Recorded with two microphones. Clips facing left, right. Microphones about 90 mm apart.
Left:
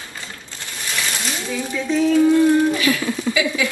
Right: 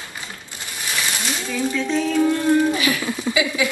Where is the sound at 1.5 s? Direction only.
10° left (ahead or behind).